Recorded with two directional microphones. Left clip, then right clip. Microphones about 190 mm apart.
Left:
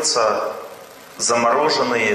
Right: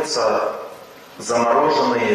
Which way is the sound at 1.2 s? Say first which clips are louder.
Even; 15° right (ahead or behind).